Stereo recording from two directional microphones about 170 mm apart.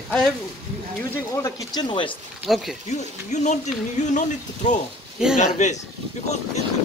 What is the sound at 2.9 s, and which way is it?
Speech, 45° left (ahead or behind).